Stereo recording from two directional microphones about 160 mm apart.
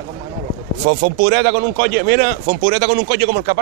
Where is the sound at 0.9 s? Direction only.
90° right.